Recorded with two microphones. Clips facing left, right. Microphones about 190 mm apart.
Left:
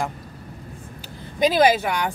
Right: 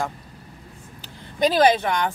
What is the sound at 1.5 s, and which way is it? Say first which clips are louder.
Speech: even; 10° left (ahead or behind).